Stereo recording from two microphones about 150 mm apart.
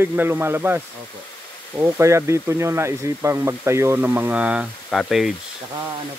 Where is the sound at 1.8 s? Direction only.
20° right (ahead or behind); by 5.3 s centre (ahead or behind).